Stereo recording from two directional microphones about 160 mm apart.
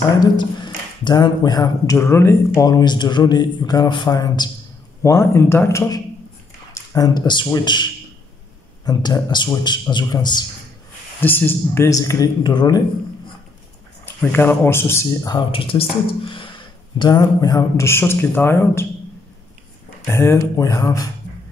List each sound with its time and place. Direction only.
0.4 s speech: 30° left (ahead or behind)
11.1 s speech: 10° left (ahead or behind)
14.2 s speech: 10° left (ahead or behind)
15.3 s a man's voice: 35° left (ahead or behind); by 18.9 s 15° left (ahead or behind)
20.1 s speech: 15° left (ahead or behind)